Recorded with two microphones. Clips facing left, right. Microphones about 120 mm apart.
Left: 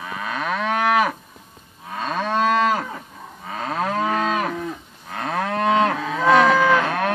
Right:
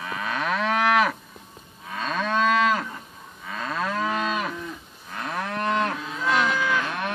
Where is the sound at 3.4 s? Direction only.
55° left (ahead or behind).